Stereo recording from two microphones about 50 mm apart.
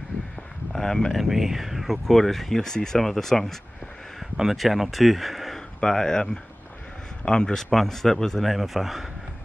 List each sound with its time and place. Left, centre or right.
0.7 s speech: centre
1.1 s speech: centre
4.2 s speech: centre
5.8 s speech: centre